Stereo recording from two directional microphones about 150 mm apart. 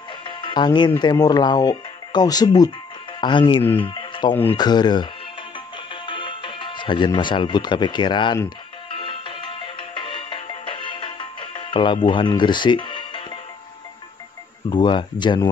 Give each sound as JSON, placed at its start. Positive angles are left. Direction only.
{"t": 0.4, "sound": "speech", "side_deg": 30}
{"t": 3.8, "sound": "music", "side_deg": 30}
{"t": 4.5, "sound": "speech", "side_deg": 30}
{"t": 6.0, "sound": "speech", "side_deg": 35}
{"t": 8.9, "sound": "music", "side_deg": 35}
{"t": 14.7, "sound": "speech", "side_deg": 30}